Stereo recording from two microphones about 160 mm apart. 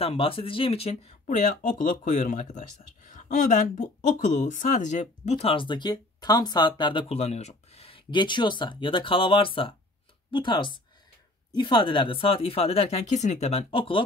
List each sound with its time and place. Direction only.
0.0 s speech: 35° left (ahead or behind)
5.5 s speech: 30° left (ahead or behind)